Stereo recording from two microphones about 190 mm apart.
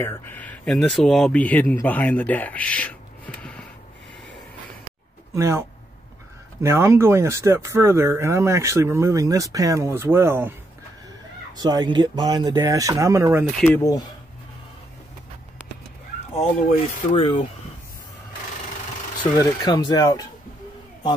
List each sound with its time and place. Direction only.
0.0 s speech: 10° left (ahead or behind)
5.3 s speech: 15° right (ahead or behind)
11.5 s speech: 20° right (ahead or behind)
13.7 s speech: 20° left (ahead or behind)
16.3 s speech: 35° left (ahead or behind)
19.3 s speech: 20° left (ahead or behind)